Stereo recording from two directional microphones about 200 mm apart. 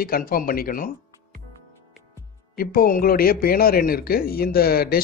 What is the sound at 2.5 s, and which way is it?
Speech, 45° left (ahead or behind).